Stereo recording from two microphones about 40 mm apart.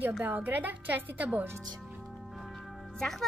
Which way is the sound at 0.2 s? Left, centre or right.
Right.